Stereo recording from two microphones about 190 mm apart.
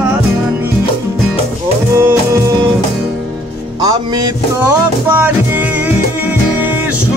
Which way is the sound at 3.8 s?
20° right (ahead or behind).